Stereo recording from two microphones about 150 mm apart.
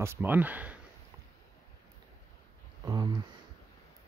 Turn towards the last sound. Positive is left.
turn(degrees=-25)  # may be behind; listen again after turning